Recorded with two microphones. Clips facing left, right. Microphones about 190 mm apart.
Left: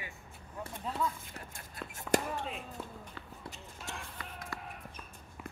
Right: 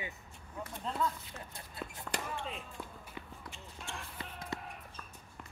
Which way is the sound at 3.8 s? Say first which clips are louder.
Even; 5° left (ahead or behind).